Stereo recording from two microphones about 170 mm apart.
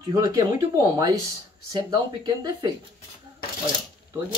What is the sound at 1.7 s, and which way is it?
Speech, 25° right (ahead or behind).